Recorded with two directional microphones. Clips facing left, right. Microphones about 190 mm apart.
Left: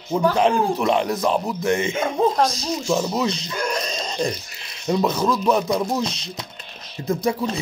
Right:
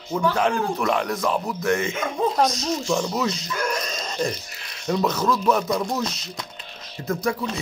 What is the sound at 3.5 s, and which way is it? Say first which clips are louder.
Dog: left 2 dB; 30° left (ahead or behind).